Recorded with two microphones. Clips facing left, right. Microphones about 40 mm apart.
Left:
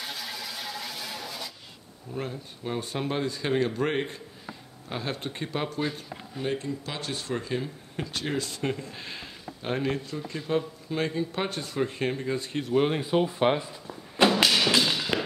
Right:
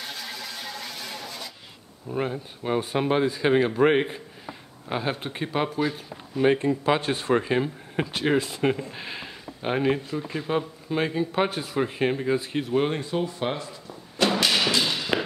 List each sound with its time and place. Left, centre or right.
0.0 s vehicle: centre
2.1 s speech: right
6.3 s speech: right
6.8 s speech: right; by 13.0 s centre
13.0 s speech: left
14.8 s a sound: centre